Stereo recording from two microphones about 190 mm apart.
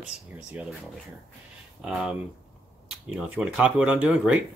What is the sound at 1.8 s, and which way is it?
Speech, 5° right (ahead or behind).